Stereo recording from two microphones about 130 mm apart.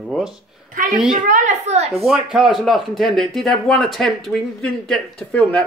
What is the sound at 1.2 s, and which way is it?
Speech, 70° right (ahead or behind).